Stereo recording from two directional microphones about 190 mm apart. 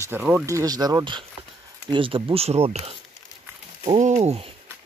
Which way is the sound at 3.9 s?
35° right (ahead or behind).